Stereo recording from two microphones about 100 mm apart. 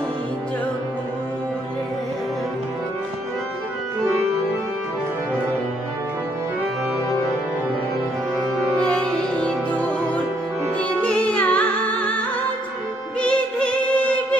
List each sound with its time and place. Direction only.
8.7 s music: 10° left (ahead or behind)
13.2 s music: 15° left (ahead or behind)